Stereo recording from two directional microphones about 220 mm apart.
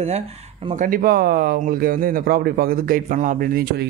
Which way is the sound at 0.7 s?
40° right (ahead or behind).